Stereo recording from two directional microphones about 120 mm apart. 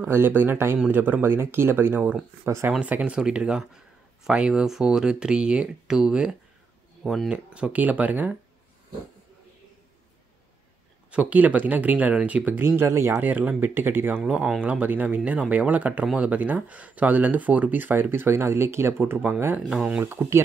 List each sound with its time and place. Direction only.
0.0 s speech: 15° right (ahead or behind)
2.8 s speech: 10° right (ahead or behind)
11.1 s speech: 10° right (ahead or behind)
19.7 s speech: 5° right (ahead or behind)
20.0 s speech: 20° right (ahead or behind)